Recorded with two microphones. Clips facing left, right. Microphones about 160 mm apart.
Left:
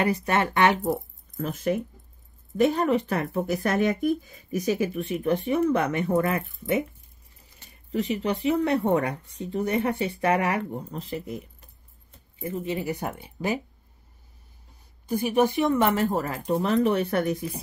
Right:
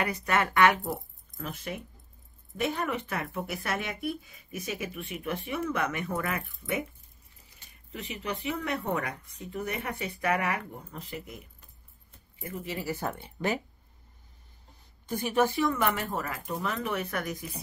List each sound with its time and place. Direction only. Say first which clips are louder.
0.0 s speech: left 5 dB; 25° left (ahead or behind)
7.9 s speech: left 10 dB; 35° left (ahead or behind)
12.4 s speech: left 7 dB; 20° left (ahead or behind)
15.0 s speech: left 4 dB; 10° left (ahead or behind); by 17.5 s 30° left (ahead or behind)